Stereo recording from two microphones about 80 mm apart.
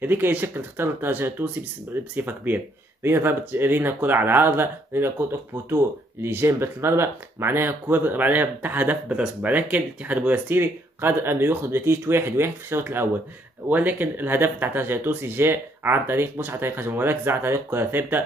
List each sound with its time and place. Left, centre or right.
0.0 s speech: right
6.2 s speech: right